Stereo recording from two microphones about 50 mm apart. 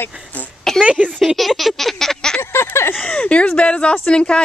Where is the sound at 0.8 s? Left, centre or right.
Right.